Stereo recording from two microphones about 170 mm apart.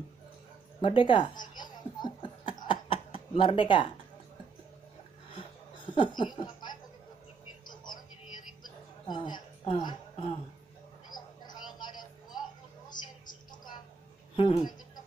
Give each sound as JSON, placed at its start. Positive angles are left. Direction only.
{"t": 0.7, "sound": "laughter", "side_deg": 30}
{"t": 5.9, "sound": "laughter", "side_deg": 25}
{"t": 7.6, "sound": "television", "side_deg": 25}
{"t": 9.0, "sound": "a woman's voice", "side_deg": 25}
{"t": 11.1, "sound": "music", "side_deg": 25}
{"t": 12.9, "sound": "a sound", "side_deg": 25}
{"t": 14.3, "sound": "speech", "side_deg": 35}